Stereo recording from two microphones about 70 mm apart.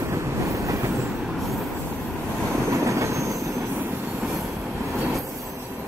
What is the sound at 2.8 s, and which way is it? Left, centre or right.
Train, right.